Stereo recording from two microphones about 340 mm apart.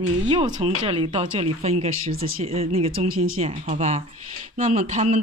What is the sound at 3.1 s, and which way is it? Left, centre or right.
Speech, right.